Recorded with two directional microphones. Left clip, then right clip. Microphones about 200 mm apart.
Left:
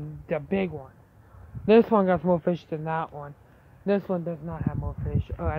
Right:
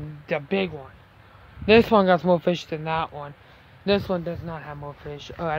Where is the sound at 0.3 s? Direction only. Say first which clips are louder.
Right 3 dB; 20° left (ahead or behind).